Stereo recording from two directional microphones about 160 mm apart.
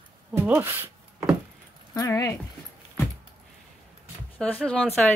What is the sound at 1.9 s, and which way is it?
Speech, 20° left (ahead or behind).